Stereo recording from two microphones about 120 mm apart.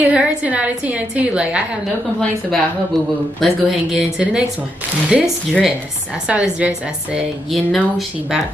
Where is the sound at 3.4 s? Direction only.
Centre (ahead or behind).